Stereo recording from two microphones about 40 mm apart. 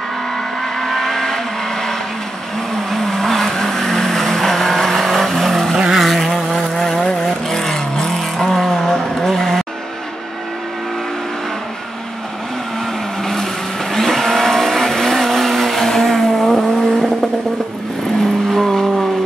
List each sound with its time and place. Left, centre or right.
0.7 s vehicle: centre
5.8 s vehicle: centre
6.0 s vehicle: centre
13.2 s vehicle: centre
18.5 s vehicle: centre